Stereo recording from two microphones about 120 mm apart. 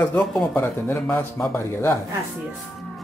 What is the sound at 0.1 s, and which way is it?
Speech, 5° left (ahead or behind).